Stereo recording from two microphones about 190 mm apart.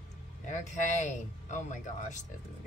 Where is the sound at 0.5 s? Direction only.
40° left (ahead or behind).